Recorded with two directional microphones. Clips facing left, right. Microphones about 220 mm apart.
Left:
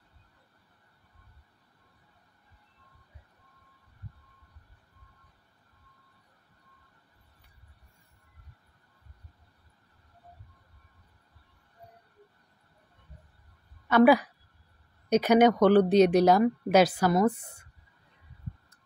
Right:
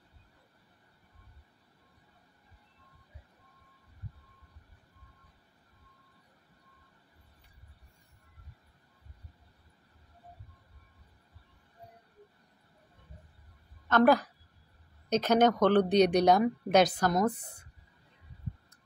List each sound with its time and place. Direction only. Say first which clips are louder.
13.8 s a woman's voice: left 4 dB; 10° left (ahead or behind)